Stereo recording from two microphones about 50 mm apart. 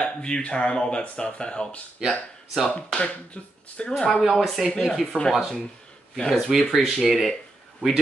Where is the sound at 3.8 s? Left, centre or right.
Left.